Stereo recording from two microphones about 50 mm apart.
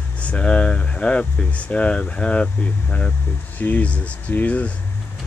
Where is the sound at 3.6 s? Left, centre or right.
Left.